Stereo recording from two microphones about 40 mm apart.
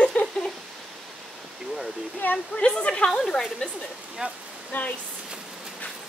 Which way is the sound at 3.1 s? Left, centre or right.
Centre.